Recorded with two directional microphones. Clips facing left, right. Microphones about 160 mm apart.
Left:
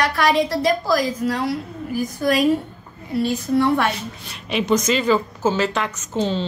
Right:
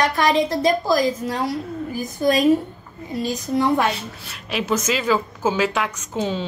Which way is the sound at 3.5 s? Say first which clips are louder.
Left 1 dB; 15° right (ahead or behind).